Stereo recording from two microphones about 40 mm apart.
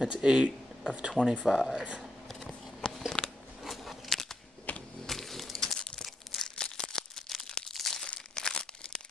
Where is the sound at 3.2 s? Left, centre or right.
Left.